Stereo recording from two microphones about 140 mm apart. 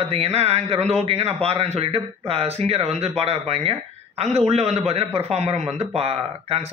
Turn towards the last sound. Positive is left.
turn(degrees=-45)  # may be behind; listen again after turning